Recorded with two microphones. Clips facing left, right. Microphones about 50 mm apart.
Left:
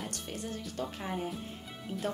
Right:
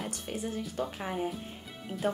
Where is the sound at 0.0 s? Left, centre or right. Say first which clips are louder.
Right 3 dB; centre.